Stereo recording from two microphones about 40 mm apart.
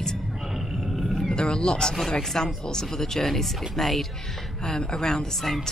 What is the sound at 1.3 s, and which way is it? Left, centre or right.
Speech, centre.